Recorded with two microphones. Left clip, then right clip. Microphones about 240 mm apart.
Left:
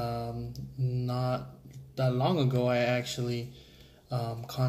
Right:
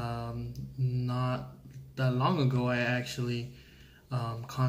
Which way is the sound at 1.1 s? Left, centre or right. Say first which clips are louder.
Left 3 dB; centre.